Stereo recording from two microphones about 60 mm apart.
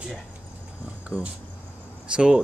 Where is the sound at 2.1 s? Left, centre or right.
Centre.